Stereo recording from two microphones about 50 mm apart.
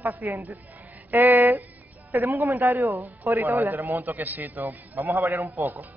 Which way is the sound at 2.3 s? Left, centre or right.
Right.